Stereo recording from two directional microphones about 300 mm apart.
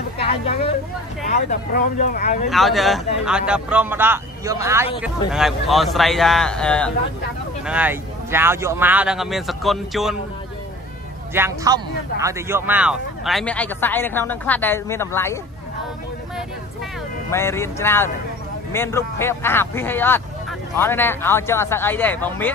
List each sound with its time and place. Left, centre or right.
0.2 s hubbub: centre
1.5 s speech: left
2.5 s speech: centre
11.3 s speech: centre
17.3 s speech: centre